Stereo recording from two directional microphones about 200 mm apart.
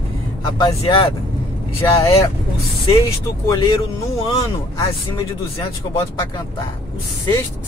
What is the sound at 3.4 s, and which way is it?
Speech, 15° left (ahead or behind).